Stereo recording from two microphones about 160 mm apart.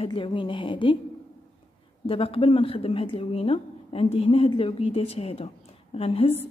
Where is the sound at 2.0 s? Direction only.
35° left (ahead or behind).